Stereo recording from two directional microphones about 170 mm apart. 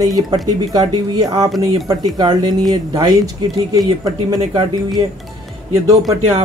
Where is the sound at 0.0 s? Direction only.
20° right (ahead or behind).